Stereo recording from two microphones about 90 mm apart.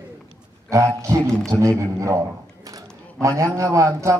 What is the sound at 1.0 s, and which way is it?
A man's voice, 35° right (ahead or behind).